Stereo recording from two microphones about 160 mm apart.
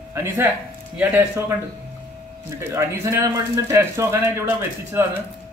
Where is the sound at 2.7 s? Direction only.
15° right (ahead or behind).